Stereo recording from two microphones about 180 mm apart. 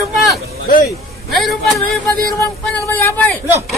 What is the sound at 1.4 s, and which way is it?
Speech, 5° left (ahead or behind).